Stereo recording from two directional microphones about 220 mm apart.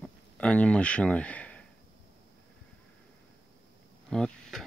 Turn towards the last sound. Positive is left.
turn(degrees=0)  # may be behind; listen again after turning